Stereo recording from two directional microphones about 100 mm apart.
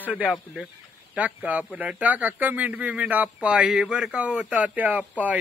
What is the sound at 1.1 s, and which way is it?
Speech, 15° right (ahead or behind).